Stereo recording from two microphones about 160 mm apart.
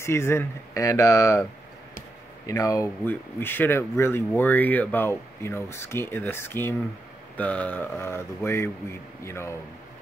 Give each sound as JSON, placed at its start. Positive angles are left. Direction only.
{"t": 0.0, "sound": "speech", "side_deg": 15}
{"t": 2.4, "sound": "speech", "side_deg": 20}